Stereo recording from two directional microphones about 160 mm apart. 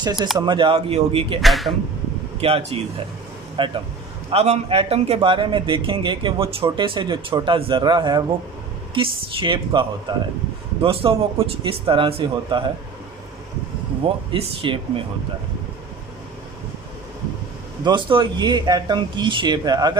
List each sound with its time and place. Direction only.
0.0 s a man's voice: 25° right (ahead or behind)
1.4 s speech: centre (ahead or behind)
2.4 s a man's voice: 35° right (ahead or behind)
14.0 s a man's voice: 35° right (ahead or behind)
17.8 s speech: 30° right (ahead or behind)